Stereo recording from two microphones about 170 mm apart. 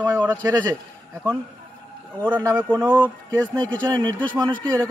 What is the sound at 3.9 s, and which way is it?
Speech, 20° right (ahead or behind).